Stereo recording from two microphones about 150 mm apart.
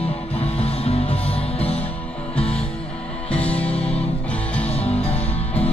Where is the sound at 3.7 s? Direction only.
40° left (ahead or behind).